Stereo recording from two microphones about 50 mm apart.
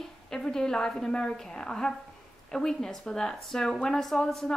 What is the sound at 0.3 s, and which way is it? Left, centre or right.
A woman's voice, centre.